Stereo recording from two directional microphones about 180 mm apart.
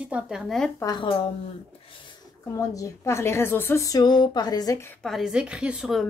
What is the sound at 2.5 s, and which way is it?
A woman's voice, 15° left (ahead or behind).